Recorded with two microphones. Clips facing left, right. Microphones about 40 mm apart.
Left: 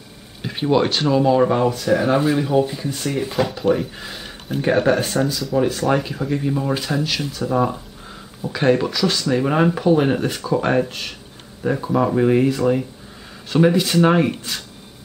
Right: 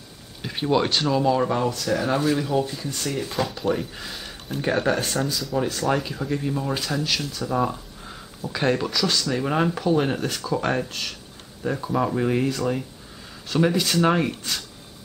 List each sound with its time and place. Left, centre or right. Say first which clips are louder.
0.4 s speech: left 4 dB; centre